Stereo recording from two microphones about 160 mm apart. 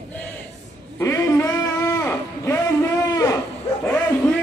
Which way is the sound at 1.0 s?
20° left (ahead or behind).